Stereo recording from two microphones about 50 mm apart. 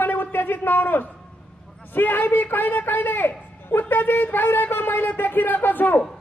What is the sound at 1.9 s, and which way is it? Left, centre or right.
A man's voice, left.